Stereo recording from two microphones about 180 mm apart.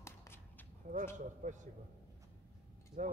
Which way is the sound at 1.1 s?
45° right (ahead or behind).